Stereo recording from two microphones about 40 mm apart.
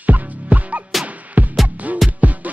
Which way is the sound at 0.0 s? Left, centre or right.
Right.